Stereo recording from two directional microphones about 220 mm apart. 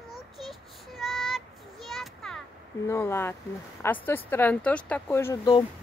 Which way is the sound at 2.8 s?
10° left (ahead or behind).